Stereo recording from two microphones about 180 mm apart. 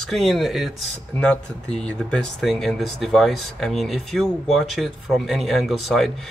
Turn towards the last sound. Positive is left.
turn(degrees=0)  # may be behind; listen again after turning